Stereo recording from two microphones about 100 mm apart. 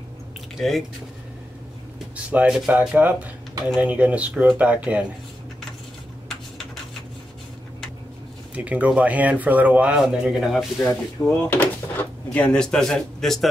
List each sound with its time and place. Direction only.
0.6 s a man's voice: centre (ahead or behind)
2.1 s speech: 15° right (ahead or behind)
8.5 s speech: 10° right (ahead or behind)
10.9 s speech: 20° left (ahead or behind)
12.5 s a man's voice: 5° left (ahead or behind)